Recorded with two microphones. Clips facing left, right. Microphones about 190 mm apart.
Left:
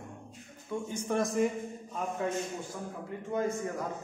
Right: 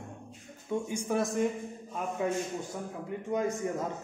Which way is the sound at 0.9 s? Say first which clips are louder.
Left 2 dB; 10° right (ahead or behind).